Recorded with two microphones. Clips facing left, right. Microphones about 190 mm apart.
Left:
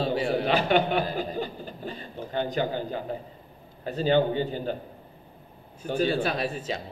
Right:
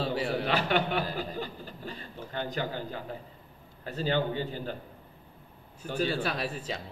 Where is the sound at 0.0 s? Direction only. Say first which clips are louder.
Left 4 dB; 20° left (ahead or behind).